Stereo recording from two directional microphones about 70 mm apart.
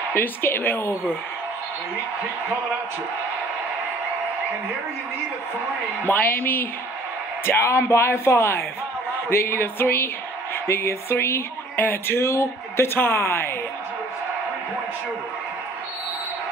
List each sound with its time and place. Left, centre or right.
0.1 s speech: left
6.0 s a woman's voice: left